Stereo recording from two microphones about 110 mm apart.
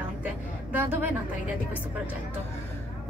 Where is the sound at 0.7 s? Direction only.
15° right (ahead or behind).